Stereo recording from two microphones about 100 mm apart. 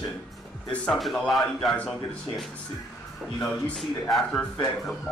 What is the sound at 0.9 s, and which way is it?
A man's voice, centre (ahead or behind).